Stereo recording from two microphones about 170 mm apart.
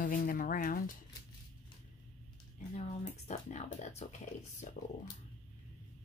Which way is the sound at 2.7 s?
40° left (ahead or behind).